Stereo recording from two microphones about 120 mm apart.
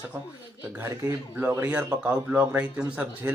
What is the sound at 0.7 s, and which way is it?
A man's voice, 20° right (ahead or behind).